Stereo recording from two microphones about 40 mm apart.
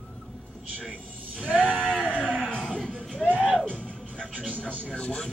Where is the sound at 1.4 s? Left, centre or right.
Right.